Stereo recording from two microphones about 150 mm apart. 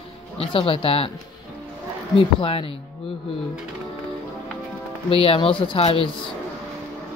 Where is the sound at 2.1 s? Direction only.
35° left (ahead or behind).